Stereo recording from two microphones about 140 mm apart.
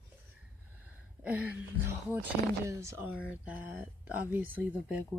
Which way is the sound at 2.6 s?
20° right (ahead or behind).